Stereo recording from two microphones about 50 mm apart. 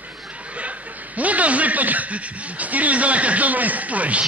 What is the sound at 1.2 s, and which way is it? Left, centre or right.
A man's voice, right.